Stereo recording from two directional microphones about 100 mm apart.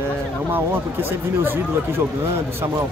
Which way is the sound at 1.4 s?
20° right (ahead or behind).